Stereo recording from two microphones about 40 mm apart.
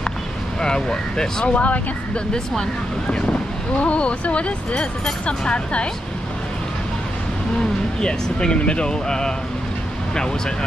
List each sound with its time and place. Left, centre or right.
0.6 s speech: centre
1.4 s speech: left
3.1 s speech: left
8.0 s speech: left